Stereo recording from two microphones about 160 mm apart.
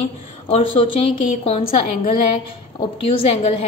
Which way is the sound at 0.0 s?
40° left (ahead or behind).